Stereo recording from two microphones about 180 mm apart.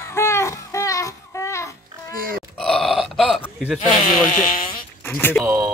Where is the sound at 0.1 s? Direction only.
15° left (ahead or behind).